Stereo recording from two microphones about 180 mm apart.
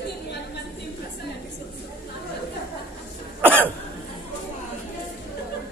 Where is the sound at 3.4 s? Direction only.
10° right (ahead or behind).